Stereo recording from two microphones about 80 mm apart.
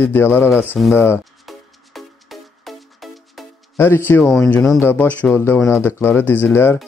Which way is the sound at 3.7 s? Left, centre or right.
Left.